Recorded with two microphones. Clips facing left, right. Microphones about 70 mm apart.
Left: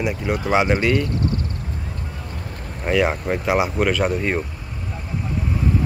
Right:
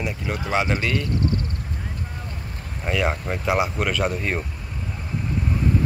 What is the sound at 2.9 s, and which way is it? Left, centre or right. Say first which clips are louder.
Speech: left 5 dB; centre.